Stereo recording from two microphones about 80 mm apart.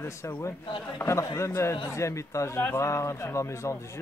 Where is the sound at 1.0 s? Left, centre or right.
Left.